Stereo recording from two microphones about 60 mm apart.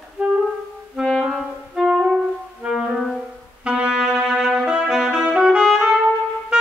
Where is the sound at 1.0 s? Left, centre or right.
Centre.